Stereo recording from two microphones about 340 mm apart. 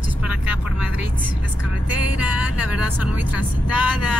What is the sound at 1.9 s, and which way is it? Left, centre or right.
Vehicle, left.